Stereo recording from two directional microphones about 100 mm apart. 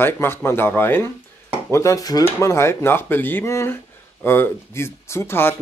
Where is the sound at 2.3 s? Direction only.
25° left (ahead or behind).